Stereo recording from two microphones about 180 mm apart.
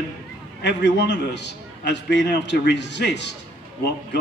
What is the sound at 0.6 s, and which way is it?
A man's voice, 70° left (ahead or behind).